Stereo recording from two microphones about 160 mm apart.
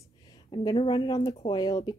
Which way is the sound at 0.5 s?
30° left (ahead or behind).